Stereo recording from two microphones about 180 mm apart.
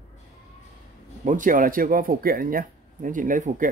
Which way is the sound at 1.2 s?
45° right (ahead or behind).